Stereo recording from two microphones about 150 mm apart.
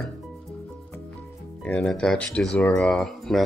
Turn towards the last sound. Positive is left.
turn(degrees=5)  # may be behind; listen again after turning